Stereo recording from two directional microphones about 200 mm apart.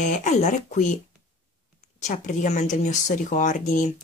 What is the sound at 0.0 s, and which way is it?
Speech, 40° left (ahead or behind).